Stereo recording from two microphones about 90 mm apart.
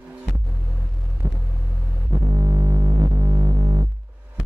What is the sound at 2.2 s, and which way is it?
Music, 40° right (ahead or behind).